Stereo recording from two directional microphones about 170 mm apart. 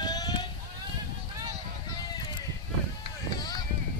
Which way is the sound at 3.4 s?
25° left (ahead or behind).